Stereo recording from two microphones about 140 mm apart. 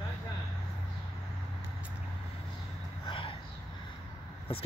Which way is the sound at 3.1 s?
40° left (ahead or behind).